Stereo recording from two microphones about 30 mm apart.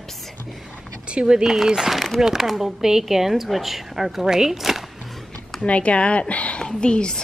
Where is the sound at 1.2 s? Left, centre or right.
Right.